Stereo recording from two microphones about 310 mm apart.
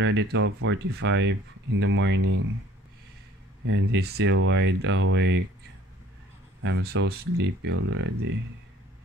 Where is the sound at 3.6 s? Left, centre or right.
Right.